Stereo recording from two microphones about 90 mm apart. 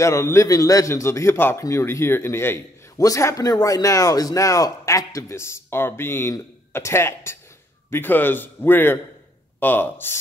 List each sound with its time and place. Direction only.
0.0 s a man's voice: 35° left (ahead or behind)